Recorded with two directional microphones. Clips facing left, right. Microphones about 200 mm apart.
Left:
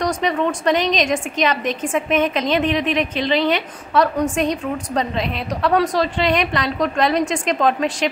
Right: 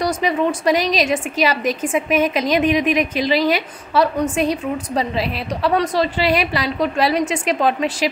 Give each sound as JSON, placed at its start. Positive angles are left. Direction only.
{"t": 0.0, "sound": "a woman's voice", "side_deg": -10}